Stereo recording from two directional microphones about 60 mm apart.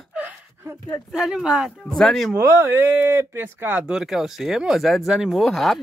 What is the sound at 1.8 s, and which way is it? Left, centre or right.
Speech, centre.